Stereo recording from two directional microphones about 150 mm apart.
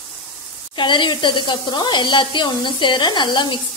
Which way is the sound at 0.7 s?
30° left (ahead or behind).